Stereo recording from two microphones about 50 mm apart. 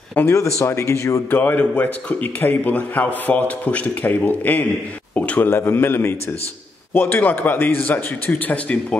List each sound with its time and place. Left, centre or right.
0.3 s speech: left
1.3 s a man's voice: left
5.1 s a sound: left
5.5 s a man's voice: left